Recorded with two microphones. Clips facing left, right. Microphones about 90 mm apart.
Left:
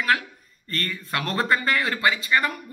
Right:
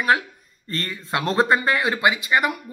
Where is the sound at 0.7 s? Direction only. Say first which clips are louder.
Right 2 dB; 20° right (ahead or behind).